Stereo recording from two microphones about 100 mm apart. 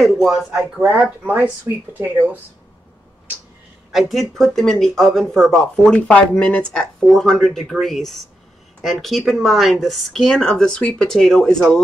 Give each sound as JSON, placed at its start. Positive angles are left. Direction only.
{"t": 0.0, "sound": "speech", "side_deg": 0}
{"t": 1.2, "sound": "speech", "side_deg": -15}
{"t": 3.9, "sound": "speech", "side_deg": 0}